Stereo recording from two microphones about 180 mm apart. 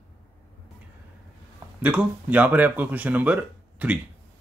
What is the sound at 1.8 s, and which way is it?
Speech, 5° right (ahead or behind).